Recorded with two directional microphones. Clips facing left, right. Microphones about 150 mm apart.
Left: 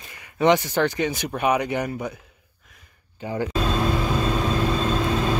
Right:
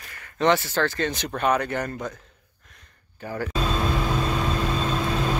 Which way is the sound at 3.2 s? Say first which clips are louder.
Left 4 dB; 15° left (ahead or behind).